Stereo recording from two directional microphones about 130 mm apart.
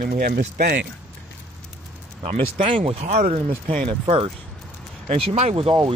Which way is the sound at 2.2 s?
50° right (ahead or behind).